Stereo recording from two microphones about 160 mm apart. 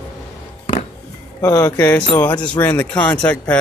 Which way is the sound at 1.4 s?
20° left (ahead or behind).